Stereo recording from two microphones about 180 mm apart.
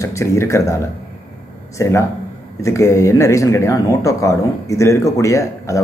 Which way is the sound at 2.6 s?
15° left (ahead or behind).